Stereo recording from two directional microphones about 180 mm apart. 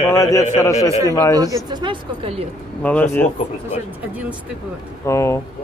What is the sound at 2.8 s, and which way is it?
Speech, 10° left (ahead or behind).